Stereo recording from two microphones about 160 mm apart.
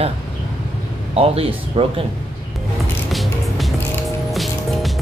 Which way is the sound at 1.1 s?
40° right (ahead or behind).